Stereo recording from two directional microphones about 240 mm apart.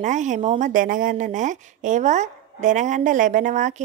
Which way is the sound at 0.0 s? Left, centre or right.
Right.